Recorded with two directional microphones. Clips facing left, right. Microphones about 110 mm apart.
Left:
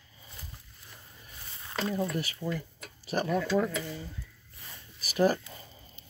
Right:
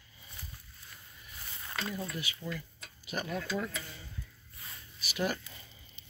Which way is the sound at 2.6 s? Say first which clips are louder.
Left 6 dB; 40° left (ahead or behind).